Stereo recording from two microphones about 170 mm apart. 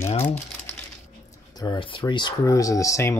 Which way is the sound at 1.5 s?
30° left (ahead or behind).